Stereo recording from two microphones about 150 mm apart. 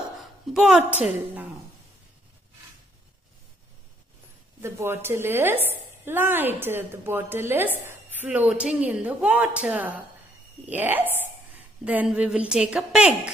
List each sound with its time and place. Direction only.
0.2 s a sound: centre (ahead or behind)
1.0 s a woman's voice: 10° right (ahead or behind)
4.6 s a woman's voice: 20° right (ahead or behind)